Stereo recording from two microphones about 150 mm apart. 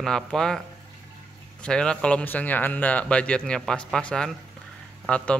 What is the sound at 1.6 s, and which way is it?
Speech, 5° left (ahead or behind).